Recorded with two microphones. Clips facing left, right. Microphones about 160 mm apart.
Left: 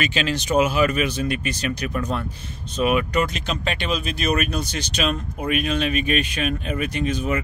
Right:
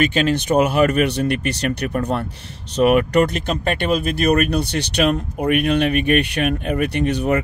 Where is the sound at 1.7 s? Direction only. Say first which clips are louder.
Right 4 dB; 50° right (ahead or behind).